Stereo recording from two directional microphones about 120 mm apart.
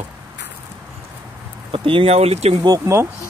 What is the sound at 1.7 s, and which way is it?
Speech, 45° right (ahead or behind).